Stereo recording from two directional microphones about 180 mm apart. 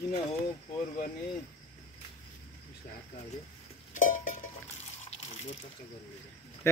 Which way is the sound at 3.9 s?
45° left (ahead or behind).